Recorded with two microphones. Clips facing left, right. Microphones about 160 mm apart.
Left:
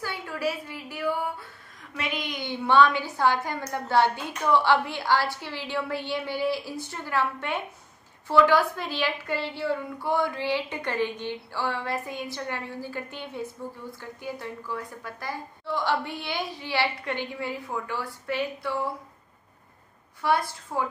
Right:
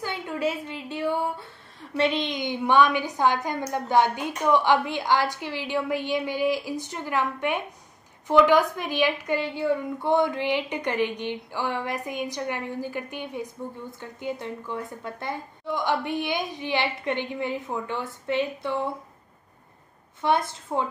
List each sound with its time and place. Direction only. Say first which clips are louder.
0.0 s a woman's voice: right 2 dB; 20° right (ahead or behind)
20.2 s a woman's voice: right 1 dB; 20° right (ahead or behind)